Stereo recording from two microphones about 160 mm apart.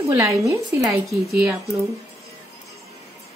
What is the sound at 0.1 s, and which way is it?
Speech, 20° right (ahead or behind).